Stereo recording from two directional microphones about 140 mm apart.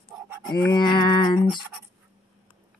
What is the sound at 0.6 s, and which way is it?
Speech, 35° left (ahead or behind).